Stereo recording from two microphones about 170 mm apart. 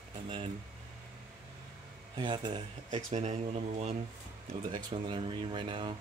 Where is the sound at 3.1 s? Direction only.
40° right (ahead or behind).